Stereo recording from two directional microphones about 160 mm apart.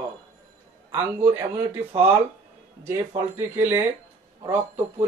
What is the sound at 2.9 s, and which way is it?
Speech, 15° right (ahead or behind).